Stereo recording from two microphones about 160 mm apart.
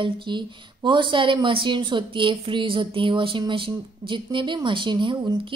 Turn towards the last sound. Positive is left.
turn(degrees=-30)  # may be behind; listen again after turning